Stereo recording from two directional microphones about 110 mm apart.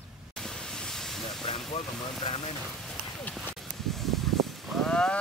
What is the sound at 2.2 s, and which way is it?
Speech, 55° left (ahead or behind).